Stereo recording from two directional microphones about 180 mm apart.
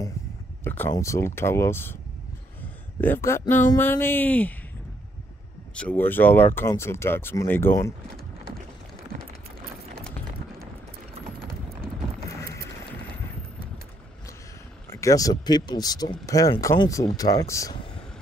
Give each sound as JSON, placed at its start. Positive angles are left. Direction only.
{"t": 0.7, "sound": "speech", "side_deg": 10}
{"t": 3.0, "sound": "speech", "side_deg": 10}
{"t": 5.8, "sound": "speech", "side_deg": 10}
{"t": 14.9, "sound": "speech", "side_deg": 20}